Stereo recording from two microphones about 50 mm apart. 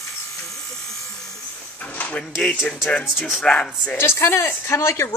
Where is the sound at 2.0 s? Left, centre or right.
Left.